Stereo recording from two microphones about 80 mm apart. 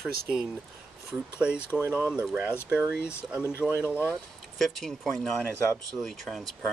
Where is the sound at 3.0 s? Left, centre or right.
Left.